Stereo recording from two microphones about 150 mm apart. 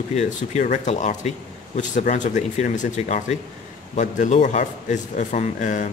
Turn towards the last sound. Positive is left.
turn(degrees=55)  # may be behind; listen again after turning